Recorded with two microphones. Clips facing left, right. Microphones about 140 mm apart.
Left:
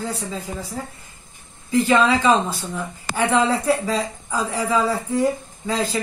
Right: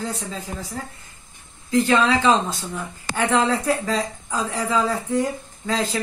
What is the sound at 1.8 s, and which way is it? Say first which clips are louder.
Speech: left 2 dB; 5° left (ahead or behind).